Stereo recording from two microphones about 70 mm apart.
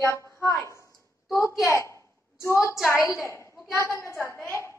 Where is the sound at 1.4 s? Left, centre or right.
Left.